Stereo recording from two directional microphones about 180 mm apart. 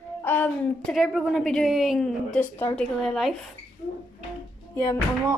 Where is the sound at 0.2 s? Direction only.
10° left (ahead or behind).